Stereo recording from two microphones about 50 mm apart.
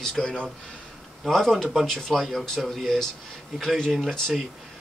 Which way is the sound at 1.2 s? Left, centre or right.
Centre.